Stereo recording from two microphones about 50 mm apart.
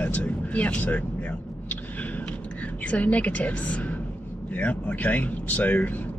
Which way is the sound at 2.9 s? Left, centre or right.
Left.